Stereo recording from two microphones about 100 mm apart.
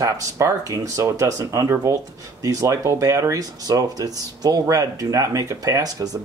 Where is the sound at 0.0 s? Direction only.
35° right (ahead or behind).